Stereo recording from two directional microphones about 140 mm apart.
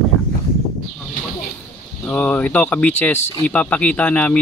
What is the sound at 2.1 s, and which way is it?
Speech, 10° left (ahead or behind).